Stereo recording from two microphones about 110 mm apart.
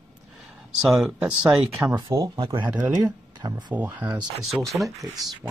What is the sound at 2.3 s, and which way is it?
Speech, 50° right (ahead or behind).